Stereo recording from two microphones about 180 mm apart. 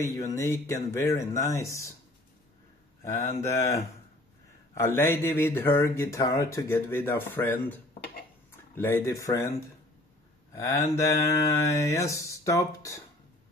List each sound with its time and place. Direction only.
0.0 s speech: 15° left (ahead or behind)
3.0 s speech: 15° left (ahead or behind)